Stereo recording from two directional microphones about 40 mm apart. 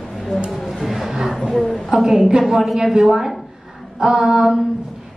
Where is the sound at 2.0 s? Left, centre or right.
Centre.